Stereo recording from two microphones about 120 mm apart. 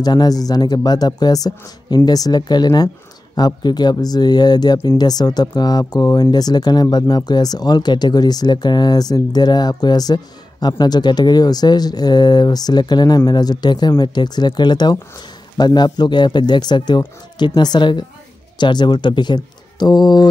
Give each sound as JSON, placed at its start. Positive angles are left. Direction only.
{"t": 0.0, "sound": "speech", "side_deg": 35}